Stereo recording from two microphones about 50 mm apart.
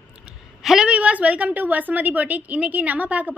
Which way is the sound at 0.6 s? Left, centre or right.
Centre.